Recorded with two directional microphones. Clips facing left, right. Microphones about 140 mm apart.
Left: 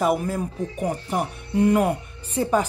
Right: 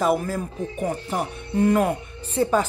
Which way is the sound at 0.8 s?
15° left (ahead or behind).